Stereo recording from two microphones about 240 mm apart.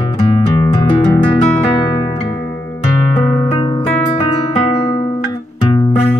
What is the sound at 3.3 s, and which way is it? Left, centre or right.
Music, centre.